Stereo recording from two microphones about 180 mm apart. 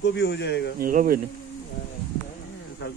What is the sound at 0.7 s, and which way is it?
Speech, 50° right (ahead or behind).